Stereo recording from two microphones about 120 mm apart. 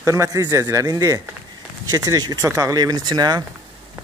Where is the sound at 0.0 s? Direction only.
25° right (ahead or behind).